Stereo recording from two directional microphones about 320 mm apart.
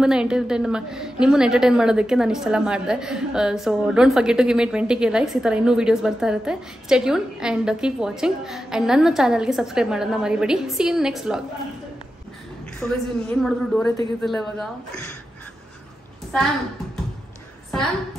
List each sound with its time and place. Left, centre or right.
0.0 s a woman's voice: centre
12.8 s a woman's voice: centre